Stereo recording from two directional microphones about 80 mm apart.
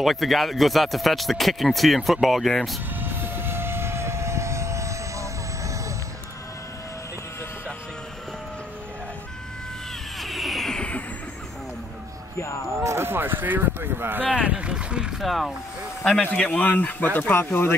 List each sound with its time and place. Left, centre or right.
0.0 s speech: centre
3.0 s vehicle: right
10.2 s vehicle: centre
10.8 s vehicle: centre
12.8 s speech: right; by 15.2 s centre
15.2 s speech: centre
16.2 s speech: centre